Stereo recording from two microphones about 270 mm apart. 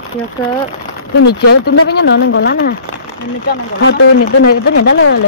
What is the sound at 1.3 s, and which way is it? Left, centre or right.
Speech, left.